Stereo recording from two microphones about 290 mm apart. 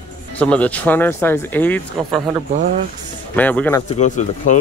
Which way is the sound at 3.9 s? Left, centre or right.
Left.